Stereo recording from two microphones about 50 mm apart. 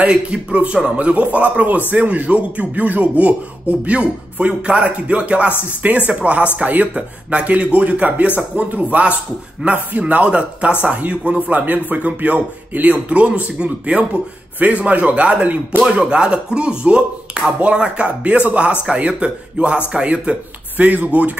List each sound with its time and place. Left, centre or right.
0.3 s speech: right